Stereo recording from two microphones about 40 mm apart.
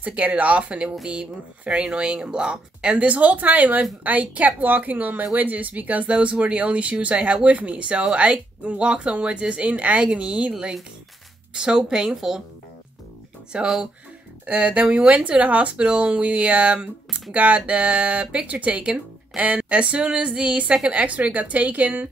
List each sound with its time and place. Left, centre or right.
0.0 s speech: right
6.0 s speech: right
9.9 s speech: right
11.5 s speech: centre
13.5 s speech: centre
20.6 s speech: right
20.9 s speech: right